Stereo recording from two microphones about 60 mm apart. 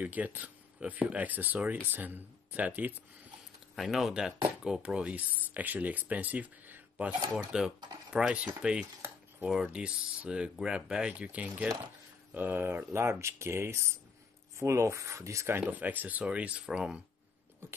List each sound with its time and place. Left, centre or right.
0.0 s speech: right
3.7 s speech: centre
4.6 s speech: centre
7.5 s speech: centre
9.5 s speech: centre; by 15.4 s right
15.6 s speech: right